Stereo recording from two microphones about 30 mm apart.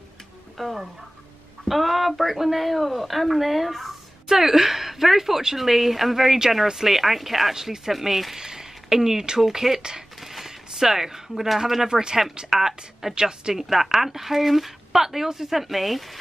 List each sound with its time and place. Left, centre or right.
0.6 s speech: centre
4.3 s speech: centre
7.5 s speech: centre
8.4 s a sound: centre
9.5 s speech: centre
10.2 s a sound: centre
10.8 s speech: centre
11.9 s a woman's voice: right
12.4 s speech: centre
13.1 s a woman's voice: right
13.6 s speech: centre
15.5 s speech: centre